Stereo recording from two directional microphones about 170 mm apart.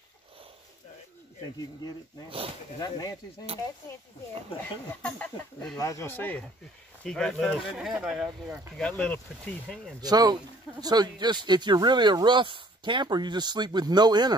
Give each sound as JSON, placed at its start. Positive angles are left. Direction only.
{"t": 2.2, "sound": "speech", "side_deg": -35}
{"t": 2.8, "sound": "speech", "side_deg": 20}
{"t": 5.0, "sound": "speech", "side_deg": 5}
{"t": 5.8, "sound": "speech", "side_deg": 20}
{"t": 9.9, "sound": "speech", "side_deg": -25}